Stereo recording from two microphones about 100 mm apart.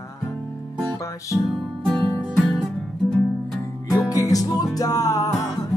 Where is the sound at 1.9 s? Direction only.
Centre (ahead or behind).